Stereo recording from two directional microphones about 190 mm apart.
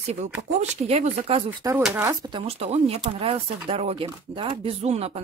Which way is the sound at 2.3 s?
30° right (ahead or behind).